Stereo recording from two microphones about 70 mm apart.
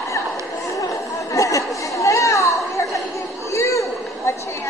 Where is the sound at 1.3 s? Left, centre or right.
Left.